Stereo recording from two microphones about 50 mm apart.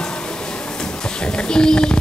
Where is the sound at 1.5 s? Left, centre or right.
Centre.